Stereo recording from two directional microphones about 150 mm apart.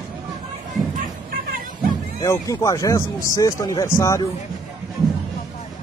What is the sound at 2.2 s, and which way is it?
Speech, 20° left (ahead or behind).